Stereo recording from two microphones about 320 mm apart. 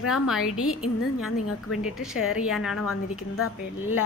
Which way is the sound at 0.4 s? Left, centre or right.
Left.